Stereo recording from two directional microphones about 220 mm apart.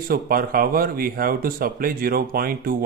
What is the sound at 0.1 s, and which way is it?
Speech, 40° right (ahead or behind).